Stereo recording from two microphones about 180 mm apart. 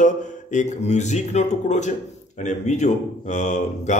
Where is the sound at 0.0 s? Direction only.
40° left (ahead or behind).